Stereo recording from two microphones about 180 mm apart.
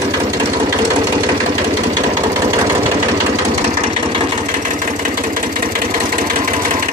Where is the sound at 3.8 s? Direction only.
35° right (ahead or behind).